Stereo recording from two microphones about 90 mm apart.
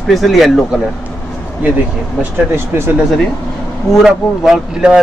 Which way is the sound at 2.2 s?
30° right (ahead or behind).